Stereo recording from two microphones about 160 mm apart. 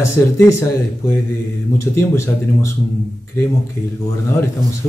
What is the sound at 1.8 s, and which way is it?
Speech, 15° left (ahead or behind).